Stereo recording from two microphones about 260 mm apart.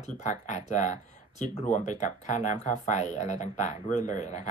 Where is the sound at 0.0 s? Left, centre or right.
Left.